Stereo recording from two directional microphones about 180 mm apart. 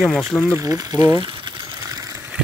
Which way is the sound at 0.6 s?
20° right (ahead or behind).